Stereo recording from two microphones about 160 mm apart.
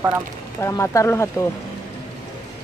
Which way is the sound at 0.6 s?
20° left (ahead or behind).